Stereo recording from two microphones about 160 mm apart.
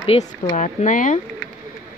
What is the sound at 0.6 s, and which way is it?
Speech, 50° left (ahead or behind).